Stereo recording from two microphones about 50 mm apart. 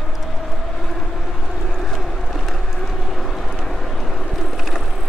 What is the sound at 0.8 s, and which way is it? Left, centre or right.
Train, centre.